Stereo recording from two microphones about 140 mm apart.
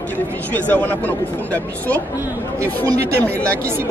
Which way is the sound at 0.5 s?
10° left (ahead or behind).